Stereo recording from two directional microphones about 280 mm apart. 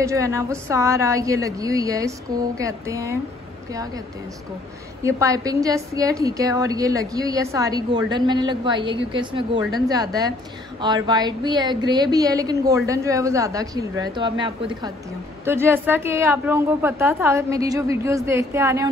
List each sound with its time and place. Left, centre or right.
0.0 s a woman's voice: centre
5.0 s a woman's voice: centre
15.4 s a woman's voice: centre